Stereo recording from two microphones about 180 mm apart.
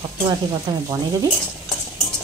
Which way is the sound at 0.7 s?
20° right (ahead or behind).